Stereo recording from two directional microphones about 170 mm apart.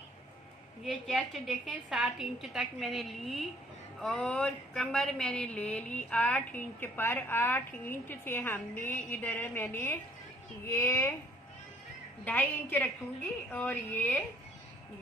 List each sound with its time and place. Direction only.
0.8 s a woman's voice: centre (ahead or behind)
12.3 s speech: 10° left (ahead or behind)